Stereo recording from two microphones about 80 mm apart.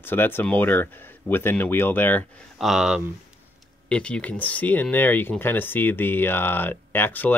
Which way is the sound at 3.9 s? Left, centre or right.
Centre.